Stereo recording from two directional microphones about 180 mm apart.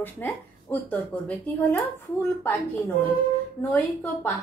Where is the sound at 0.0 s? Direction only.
10° left (ahead or behind).